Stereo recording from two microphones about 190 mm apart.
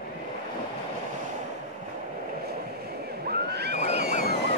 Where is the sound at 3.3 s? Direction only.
60° right (ahead or behind).